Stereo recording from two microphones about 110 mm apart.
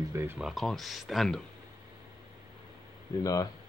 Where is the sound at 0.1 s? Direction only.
25° right (ahead or behind).